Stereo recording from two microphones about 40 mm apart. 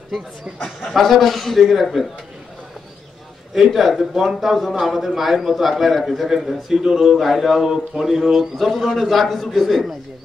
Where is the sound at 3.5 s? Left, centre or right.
Centre.